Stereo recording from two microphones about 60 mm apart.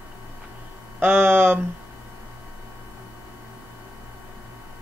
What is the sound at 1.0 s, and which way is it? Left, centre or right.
Speech, right.